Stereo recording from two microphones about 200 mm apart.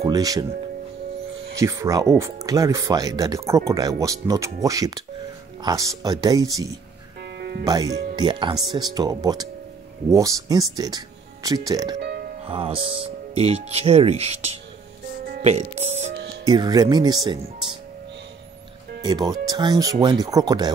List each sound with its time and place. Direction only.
0.0 s speech: 20° right (ahead or behind)
1.6 s speech: 15° right (ahead or behind)
7.2 s music: 55° right (ahead or behind)
7.6 s speech: 20° right (ahead or behind)
12.0 s music: 55° right (ahead or behind)
12.4 s speech: 25° right (ahead or behind)
16.4 s speech: 20° right (ahead or behind)
19.0 s speech: 20° right (ahead or behind)